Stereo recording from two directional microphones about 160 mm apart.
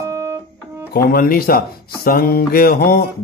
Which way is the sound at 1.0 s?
70° left (ahead or behind).